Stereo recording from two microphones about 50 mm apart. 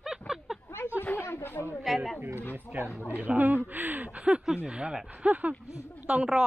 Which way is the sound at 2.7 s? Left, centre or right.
Right.